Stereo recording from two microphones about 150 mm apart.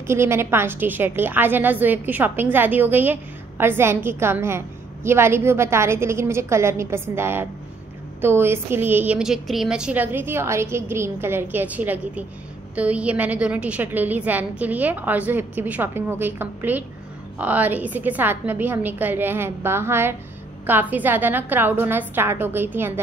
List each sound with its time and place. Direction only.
0.0 s a woman's voice: 15° right (ahead or behind)